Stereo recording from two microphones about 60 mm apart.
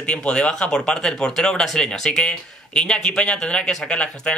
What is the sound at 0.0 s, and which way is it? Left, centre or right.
Speech, centre.